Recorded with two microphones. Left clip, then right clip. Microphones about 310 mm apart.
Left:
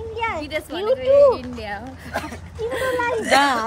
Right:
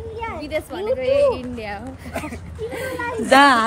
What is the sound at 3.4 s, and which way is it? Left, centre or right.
Speech, right.